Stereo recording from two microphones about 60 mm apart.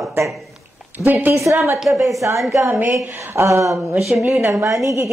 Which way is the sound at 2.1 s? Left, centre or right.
Right.